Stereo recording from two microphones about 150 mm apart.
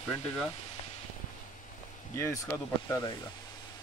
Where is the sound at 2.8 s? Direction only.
20° left (ahead or behind).